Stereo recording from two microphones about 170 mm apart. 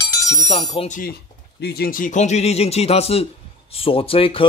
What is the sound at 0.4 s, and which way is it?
Speech, 35° left (ahead or behind).